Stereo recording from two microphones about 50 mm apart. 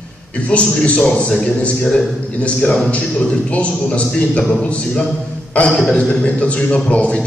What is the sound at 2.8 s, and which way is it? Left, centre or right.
A man's voice, left.